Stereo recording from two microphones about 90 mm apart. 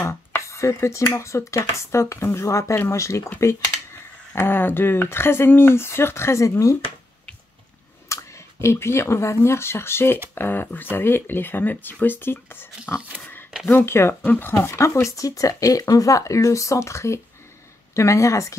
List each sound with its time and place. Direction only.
0.0 s speech: 35° left (ahead or behind)
4.4 s speech: 25° left (ahead or behind)
8.1 s speech: 30° left (ahead or behind)
13.2 s a sound: 20° left (ahead or behind)
13.7 s speech: 30° left (ahead or behind)